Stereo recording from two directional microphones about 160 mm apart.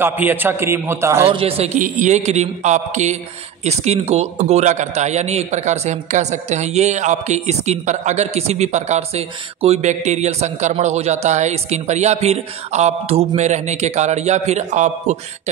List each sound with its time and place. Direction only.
0.0 s a man's voice: 10° right (ahead or behind)
1.3 s a man's voice: 35° right (ahead or behind)